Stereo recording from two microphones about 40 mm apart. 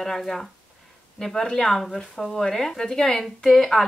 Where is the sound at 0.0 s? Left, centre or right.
Centre.